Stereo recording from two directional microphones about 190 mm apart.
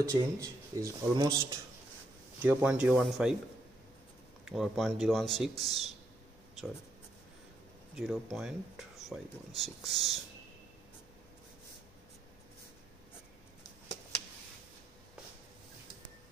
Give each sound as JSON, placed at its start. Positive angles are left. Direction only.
{"t": 0.0, "sound": "speech", "side_deg": -15}
{"t": 2.4, "sound": "speech", "side_deg": -5}
{"t": 4.5, "sound": "speech", "side_deg": 0}
{"t": 7.9, "sound": "speech", "side_deg": 0}